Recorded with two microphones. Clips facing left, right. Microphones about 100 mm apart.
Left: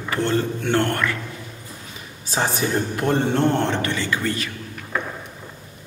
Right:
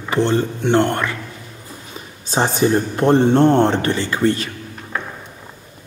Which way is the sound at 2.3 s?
25° right (ahead or behind).